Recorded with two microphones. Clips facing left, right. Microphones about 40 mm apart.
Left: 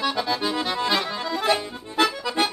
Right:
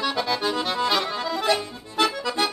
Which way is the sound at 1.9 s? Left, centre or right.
Left.